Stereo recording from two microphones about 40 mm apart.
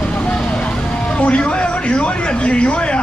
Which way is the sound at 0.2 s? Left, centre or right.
Left.